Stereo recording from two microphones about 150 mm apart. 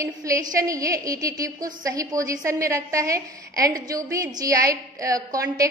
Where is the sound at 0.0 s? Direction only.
20° right (ahead or behind).